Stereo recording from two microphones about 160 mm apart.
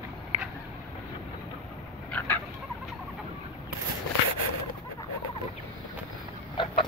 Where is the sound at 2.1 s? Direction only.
10° left (ahead or behind).